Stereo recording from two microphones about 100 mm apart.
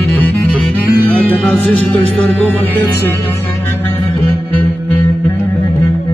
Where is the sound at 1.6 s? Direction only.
10° left (ahead or behind).